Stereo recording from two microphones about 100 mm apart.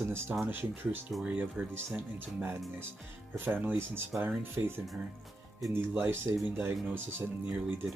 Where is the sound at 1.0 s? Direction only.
10° right (ahead or behind).